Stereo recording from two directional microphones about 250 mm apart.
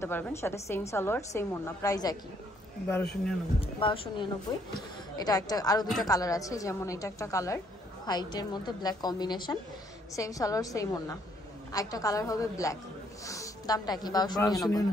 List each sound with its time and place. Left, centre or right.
0.0 s a woman's voice: centre
3.6 s a woman's voice: left